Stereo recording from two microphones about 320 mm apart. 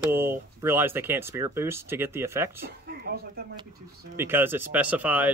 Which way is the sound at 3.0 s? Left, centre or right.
Right.